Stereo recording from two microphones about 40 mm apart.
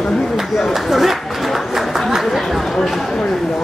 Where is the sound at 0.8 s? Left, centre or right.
Centre.